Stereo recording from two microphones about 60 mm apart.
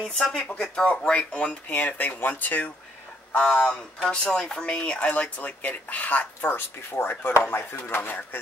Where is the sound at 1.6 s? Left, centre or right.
Left.